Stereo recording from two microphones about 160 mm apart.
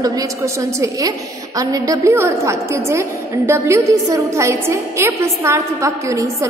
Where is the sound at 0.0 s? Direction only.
20° right (ahead or behind).